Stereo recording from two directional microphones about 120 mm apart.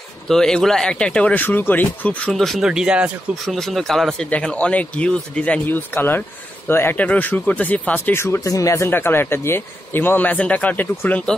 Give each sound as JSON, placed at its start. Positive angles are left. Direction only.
{"t": 0.3, "sound": "speech", "side_deg": 5}
{"t": 3.4, "sound": "speech", "side_deg": 5}